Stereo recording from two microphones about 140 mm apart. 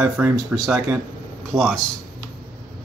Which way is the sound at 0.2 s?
15° right (ahead or behind).